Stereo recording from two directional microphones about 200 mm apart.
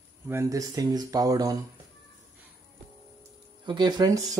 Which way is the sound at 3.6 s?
20° right (ahead or behind).